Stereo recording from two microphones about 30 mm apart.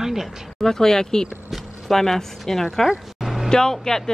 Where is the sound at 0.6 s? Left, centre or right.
Centre.